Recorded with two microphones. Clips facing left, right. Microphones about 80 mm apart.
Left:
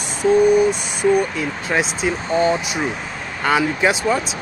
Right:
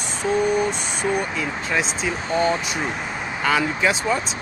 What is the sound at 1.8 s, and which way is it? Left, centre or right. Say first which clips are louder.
Speech: left 3 dB; centre.